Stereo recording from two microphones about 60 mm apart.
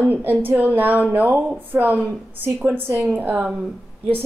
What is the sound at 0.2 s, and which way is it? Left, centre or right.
A woman's voice, right.